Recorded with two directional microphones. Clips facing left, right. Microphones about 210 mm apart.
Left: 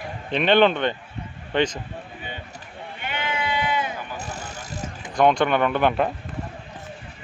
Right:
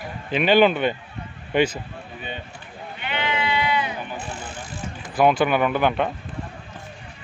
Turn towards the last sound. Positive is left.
turn(degrees=0)  # may be behind; listen again after turning